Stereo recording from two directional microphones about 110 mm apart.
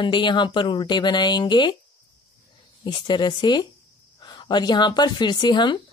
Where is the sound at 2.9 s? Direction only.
40° left (ahead or behind).